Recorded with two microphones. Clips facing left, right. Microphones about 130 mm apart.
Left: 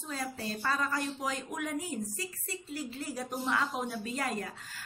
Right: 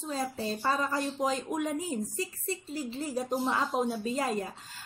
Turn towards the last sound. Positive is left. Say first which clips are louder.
# right 4 dB
turn(degrees=-25)  # may be behind; listen again after turning